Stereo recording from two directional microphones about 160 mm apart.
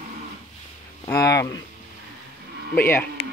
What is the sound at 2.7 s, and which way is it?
Speech, 15° left (ahead or behind).